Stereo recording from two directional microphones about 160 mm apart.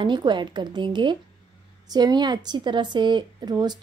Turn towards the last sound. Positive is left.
turn(degrees=-25)  # may be behind; listen again after turning